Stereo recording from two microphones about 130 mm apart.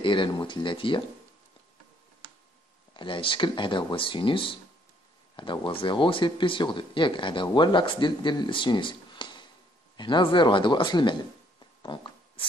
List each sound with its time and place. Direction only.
0.0 s speech: 40° left (ahead or behind)
3.0 s speech: 40° left (ahead or behind)
11.8 s a sound: 35° left (ahead or behind)